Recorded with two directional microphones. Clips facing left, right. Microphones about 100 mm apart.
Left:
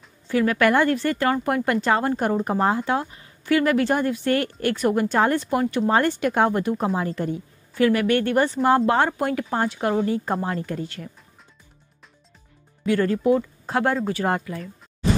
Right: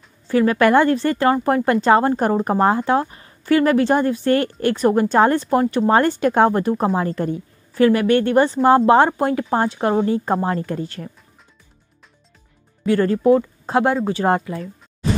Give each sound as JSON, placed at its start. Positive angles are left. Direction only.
{"t": 0.3, "sound": "a woman's voice", "side_deg": -35}
{"t": 7.7, "sound": "a woman's voice", "side_deg": -35}
{"t": 12.8, "sound": "a woman's voice", "side_deg": -35}
{"t": 13.7, "sound": "a woman's voice", "side_deg": -25}